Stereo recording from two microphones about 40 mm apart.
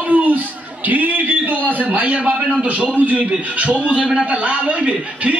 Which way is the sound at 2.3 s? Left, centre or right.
Right.